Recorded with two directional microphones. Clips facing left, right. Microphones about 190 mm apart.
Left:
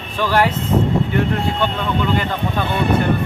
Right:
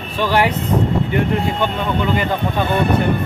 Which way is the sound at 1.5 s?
10° right (ahead or behind).